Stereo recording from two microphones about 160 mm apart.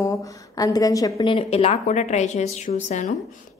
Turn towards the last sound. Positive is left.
turn(degrees=50)  # may be behind; listen again after turning